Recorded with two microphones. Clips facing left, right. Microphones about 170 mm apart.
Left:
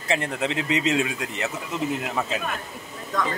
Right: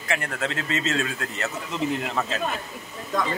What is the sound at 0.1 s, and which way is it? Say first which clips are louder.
Speech: left 3 dB; 20° left (ahead or behind).